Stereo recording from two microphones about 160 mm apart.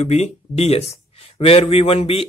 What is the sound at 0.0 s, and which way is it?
Speech, 45° left (ahead or behind).